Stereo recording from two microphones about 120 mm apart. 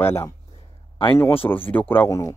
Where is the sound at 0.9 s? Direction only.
50° left (ahead or behind).